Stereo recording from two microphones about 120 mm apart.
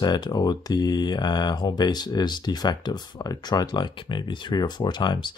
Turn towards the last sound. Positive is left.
turn(degrees=40)  # may be behind; listen again after turning